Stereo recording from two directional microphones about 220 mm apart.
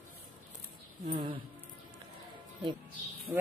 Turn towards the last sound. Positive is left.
turn(degrees=-10)  # may be behind; listen again after turning